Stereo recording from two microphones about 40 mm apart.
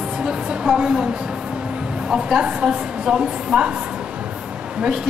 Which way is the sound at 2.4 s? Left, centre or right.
Right.